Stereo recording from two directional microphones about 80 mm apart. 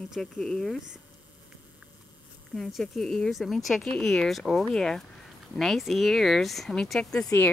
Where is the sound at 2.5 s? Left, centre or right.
Centre.